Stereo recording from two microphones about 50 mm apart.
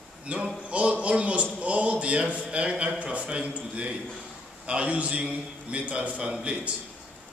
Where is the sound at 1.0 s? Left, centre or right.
Right.